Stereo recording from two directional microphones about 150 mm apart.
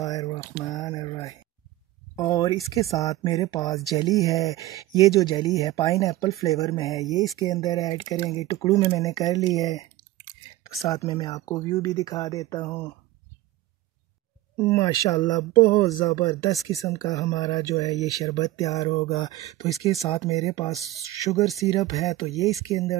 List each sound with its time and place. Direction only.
0.0 s speech: 25° left (ahead or behind)
0.7 s a sound: 25° left (ahead or behind)
2.1 s speech: 25° left (ahead or behind)
11.1 s speech: 25° left (ahead or behind)
14.6 s speech: 20° left (ahead or behind)
20.1 s speech: 45° left (ahead or behind)
20.3 s speech: 25° left (ahead or behind)
22.5 s speech: 20° right (ahead or behind)